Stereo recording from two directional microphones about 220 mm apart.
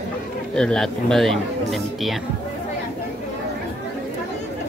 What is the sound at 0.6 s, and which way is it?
Speech, 5° left (ahead or behind).